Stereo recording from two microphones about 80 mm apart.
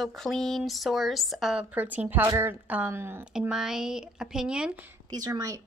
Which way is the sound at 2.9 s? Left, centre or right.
Right.